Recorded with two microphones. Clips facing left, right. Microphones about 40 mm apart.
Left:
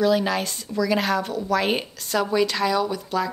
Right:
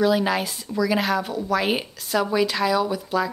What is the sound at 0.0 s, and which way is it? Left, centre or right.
A woman's voice, centre.